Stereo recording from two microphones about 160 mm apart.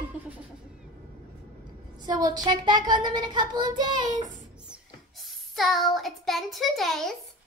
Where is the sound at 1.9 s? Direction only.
25° right (ahead or behind).